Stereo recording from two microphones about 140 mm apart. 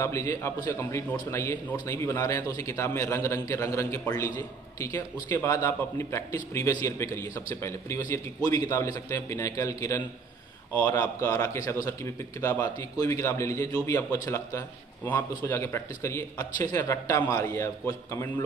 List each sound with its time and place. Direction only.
0.0 s a man's voice: 20° left (ahead or behind)
12.9 s a man's voice: 25° left (ahead or behind)